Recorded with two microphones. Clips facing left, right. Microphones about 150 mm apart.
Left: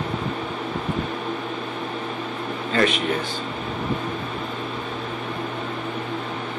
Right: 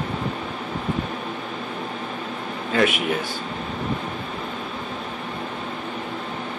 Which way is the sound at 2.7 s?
5° right (ahead or behind).